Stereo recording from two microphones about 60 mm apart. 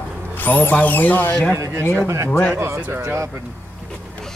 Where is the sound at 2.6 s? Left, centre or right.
Right.